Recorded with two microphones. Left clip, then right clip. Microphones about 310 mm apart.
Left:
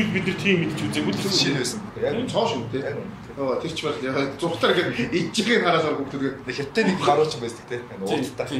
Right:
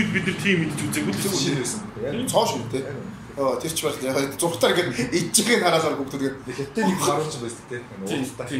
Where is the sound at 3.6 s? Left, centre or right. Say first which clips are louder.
Right 1 dB; centre.